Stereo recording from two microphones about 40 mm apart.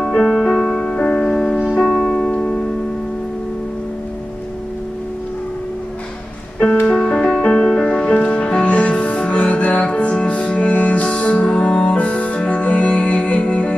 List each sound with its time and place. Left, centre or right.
0.0 s music: centre
6.9 s music: left